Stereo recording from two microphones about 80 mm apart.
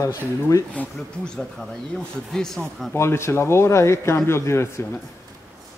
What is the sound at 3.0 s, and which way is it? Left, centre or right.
Speech, left.